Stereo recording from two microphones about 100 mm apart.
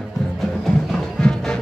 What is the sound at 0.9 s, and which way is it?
Music, 10° left (ahead or behind).